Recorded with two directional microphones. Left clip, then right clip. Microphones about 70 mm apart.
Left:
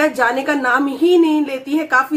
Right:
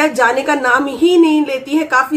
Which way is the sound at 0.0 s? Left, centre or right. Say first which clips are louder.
Right 3 dB; left.